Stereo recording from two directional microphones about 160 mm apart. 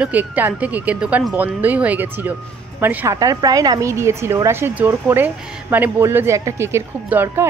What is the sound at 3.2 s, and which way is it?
Speech, 25° right (ahead or behind).